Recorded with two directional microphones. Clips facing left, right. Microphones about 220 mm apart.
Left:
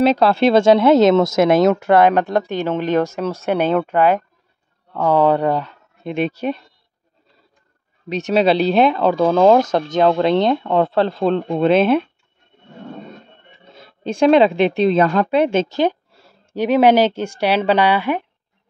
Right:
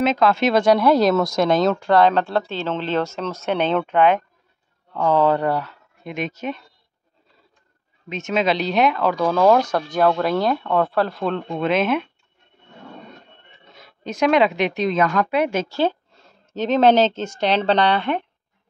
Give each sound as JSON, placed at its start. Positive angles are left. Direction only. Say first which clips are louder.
{"t": 0.0, "sound": "speech", "louder": "left 4 dB", "side_deg": 35}
{"t": 6.1, "sound": "speech", "louder": "left 6 dB", "side_deg": 35}
{"t": 8.1, "sound": "speech", "louder": "left 5 dB", "side_deg": 35}
{"t": 13.7, "sound": "speech", "louder": "left 5 dB", "side_deg": 30}